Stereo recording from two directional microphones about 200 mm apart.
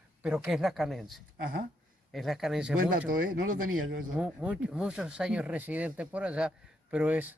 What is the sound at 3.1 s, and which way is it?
Speech, 45° right (ahead or behind).